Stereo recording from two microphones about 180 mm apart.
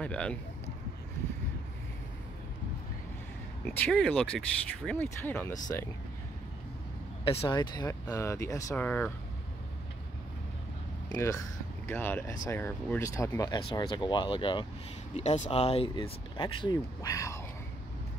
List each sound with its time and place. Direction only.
0.0 s speech: 5° left (ahead or behind)
3.6 s speech: 10° left (ahead or behind)
7.2 s speech: 30° left (ahead or behind); by 9.1 s 10° left (ahead or behind)
11.1 s speech: 15° left (ahead or behind)
15.1 s speech: 40° left (ahead or behind); by 17.4 s 15° left (ahead or behind)